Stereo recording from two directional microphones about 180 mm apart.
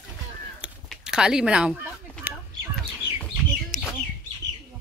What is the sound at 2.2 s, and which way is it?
Fowl, 5° right (ahead or behind).